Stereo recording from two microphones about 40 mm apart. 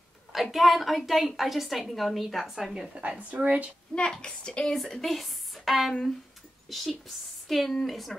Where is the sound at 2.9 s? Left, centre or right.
Right.